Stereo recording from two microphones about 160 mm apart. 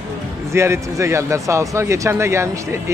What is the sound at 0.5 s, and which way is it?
Speech, 15° right (ahead or behind).